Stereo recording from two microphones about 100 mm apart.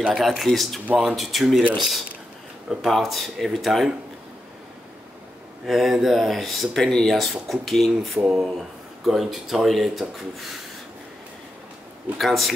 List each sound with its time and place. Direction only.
0.1 s speech: centre (ahead or behind)
5.7 s speech: 5° right (ahead or behind)
8.2 s speech: 10° right (ahead or behind)
12.2 s speech: centre (ahead or behind)